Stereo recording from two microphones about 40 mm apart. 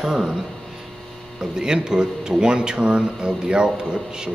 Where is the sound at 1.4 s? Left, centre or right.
Centre.